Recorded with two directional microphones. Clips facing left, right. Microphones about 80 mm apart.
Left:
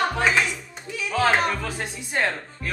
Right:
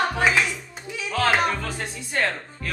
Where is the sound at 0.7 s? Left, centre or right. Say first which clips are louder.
Left 1 dB; centre.